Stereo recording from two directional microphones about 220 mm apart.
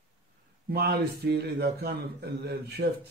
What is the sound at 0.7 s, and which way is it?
Speech, 45° right (ahead or behind).